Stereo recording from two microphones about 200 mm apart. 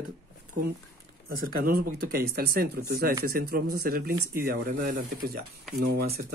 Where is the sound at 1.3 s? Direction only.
45° right (ahead or behind).